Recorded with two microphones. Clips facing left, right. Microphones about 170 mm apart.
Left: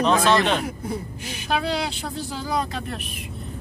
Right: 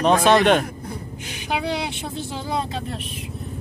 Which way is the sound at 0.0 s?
55° right (ahead or behind).